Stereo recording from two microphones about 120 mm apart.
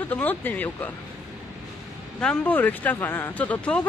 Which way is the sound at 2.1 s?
10° left (ahead or behind).